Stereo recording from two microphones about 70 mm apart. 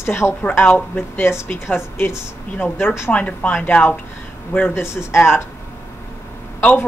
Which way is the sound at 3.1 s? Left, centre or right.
Centre.